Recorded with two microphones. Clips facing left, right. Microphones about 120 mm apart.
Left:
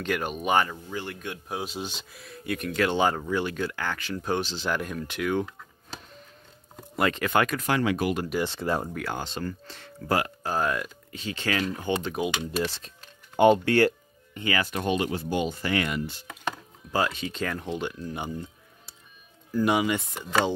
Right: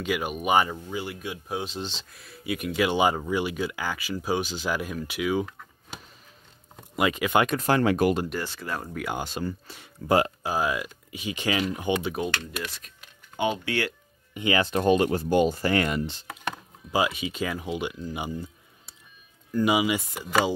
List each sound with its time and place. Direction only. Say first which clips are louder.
0.0 s speech: right 1 dB; 10° right (ahead or behind)
7.0 s speech: right 1 dB; 10° right (ahead or behind)
7.4 s speech: right 3 dB; 35° right (ahead or behind)
8.5 s speech: left 6 dB; 25° left (ahead or behind)
9.0 s speech: right 2 dB; 15° right (ahead or behind)
12.2 s speech: left 1 dB; centre (ahead or behind)
12.5 s speech: left 7 dB; 30° left (ahead or behind)
13.4 s speech: left 8 dB; 50° left (ahead or behind)
14.3 s speech: right 4 dB; 20° right (ahead or behind); by 16.0 s 40° right (ahead or behind)
16.9 s speech: right 1 dB; 10° right (ahead or behind)